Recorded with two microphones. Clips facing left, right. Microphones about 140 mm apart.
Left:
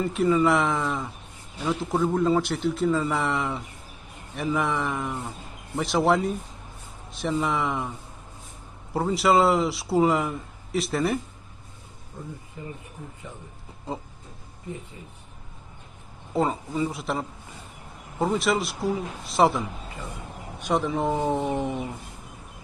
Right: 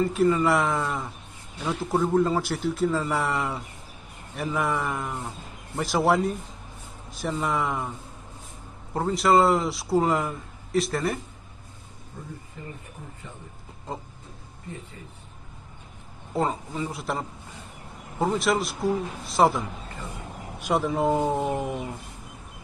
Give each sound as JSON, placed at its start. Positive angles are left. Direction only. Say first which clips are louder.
{"t": 0.0, "sound": "speech", "louder": "even", "side_deg": 0}
{"t": 8.9, "sound": "speech", "louder": "even", "side_deg": 5}
{"t": 12.6, "sound": "speech", "louder": "left 3 dB", "side_deg": 15}
{"t": 16.3, "sound": "speech", "louder": "left 2 dB", "side_deg": 5}
{"t": 20.6, "sound": "speech", "louder": "right 1 dB", "side_deg": -5}